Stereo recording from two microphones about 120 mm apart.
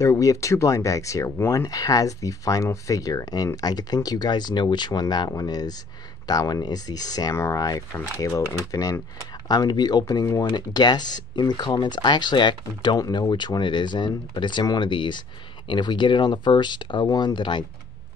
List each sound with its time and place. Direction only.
0.0 s speech: 25° left (ahead or behind)
1.7 s speech: 30° left (ahead or behind)